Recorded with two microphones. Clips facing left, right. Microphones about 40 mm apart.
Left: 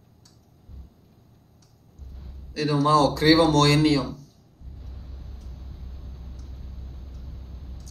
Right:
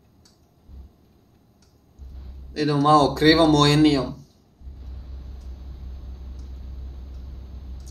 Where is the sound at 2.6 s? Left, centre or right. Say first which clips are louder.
Right 3 dB; right.